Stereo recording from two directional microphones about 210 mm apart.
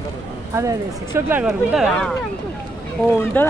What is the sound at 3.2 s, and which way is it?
Speech, 10° left (ahead or behind).